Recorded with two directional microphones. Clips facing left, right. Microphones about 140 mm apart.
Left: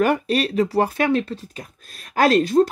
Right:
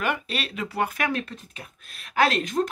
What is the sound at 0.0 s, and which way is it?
Speech, 40° left (ahead or behind).